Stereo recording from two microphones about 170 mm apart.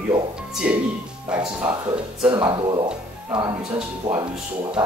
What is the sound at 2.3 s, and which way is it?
Speech, 25° right (ahead or behind).